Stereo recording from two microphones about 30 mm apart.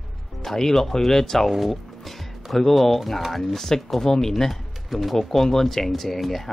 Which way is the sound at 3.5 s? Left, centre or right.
Centre.